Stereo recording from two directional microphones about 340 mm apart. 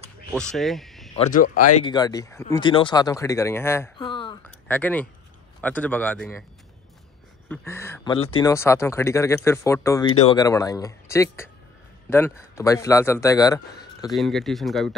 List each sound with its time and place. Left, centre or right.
0.3 s speech: centre
1.1 s speech: left
1.9 s speech: centre
7.4 s speech: centre